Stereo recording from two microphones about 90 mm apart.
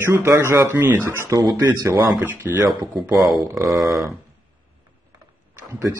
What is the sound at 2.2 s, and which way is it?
Speech, 20° right (ahead or behind).